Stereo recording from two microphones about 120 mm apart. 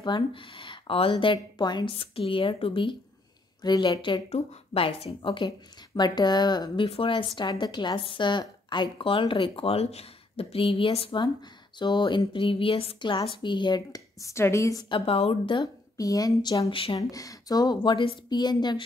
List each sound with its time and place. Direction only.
0.0 s speech: 40° left (ahead or behind)
1.9 s a woman's voice: 50° left (ahead or behind)
4.3 s a woman's voice: 55° left (ahead or behind); by 6.9 s 35° left (ahead or behind)
6.9 s a woman's voice: 45° left (ahead or behind)
11.8 s speech: 40° left (ahead or behind)
14.9 s speech: 50° left (ahead or behind); by 16.6 s 30° left (ahead or behind)
16.6 s a woman's voice: 50° left (ahead or behind)
17.1 s speech: 30° left (ahead or behind)